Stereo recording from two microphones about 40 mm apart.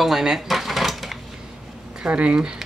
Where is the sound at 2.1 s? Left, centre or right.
Right.